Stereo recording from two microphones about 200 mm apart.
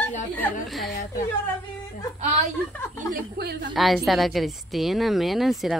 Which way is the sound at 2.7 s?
10° left (ahead or behind).